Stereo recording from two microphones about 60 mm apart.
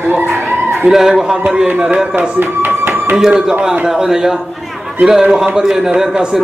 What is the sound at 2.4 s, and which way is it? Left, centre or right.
Tap, right.